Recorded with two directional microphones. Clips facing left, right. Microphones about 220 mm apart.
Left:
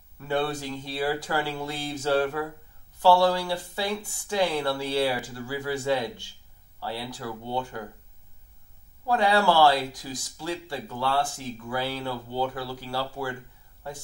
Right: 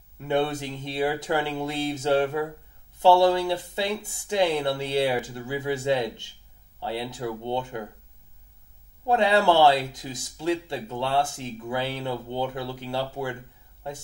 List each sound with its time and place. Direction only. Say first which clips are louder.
0.3 s speech: right 2 dB; 20° right (ahead or behind)
9.0 s speech: right 2 dB; 25° right (ahead or behind)